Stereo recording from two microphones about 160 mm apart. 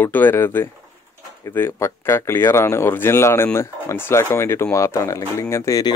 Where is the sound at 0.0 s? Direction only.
10° left (ahead or behind).